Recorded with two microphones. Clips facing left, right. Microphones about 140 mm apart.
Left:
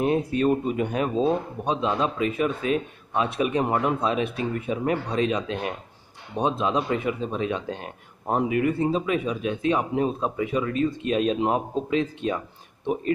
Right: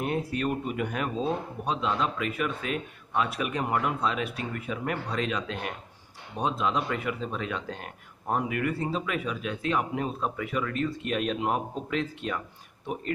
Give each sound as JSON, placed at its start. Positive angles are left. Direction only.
{"t": 0.0, "sound": "speech", "side_deg": 20}